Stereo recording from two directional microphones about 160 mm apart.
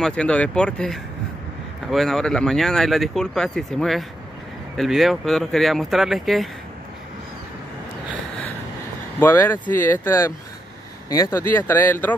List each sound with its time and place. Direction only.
0.0 s speech: 5° left (ahead or behind)
9.2 s speech: 15° left (ahead or behind)